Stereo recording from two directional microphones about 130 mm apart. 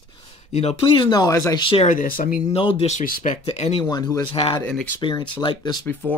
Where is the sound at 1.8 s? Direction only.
85° left.